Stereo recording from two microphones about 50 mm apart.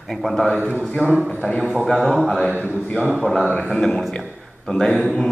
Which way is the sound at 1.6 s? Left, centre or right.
Centre.